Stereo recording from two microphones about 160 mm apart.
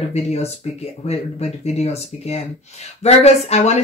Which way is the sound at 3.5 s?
45° left (ahead or behind).